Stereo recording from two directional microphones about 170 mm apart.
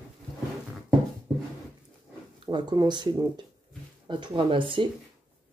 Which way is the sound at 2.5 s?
25° right (ahead or behind).